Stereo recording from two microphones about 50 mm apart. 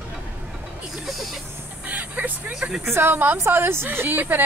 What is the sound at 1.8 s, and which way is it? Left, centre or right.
Speech, right.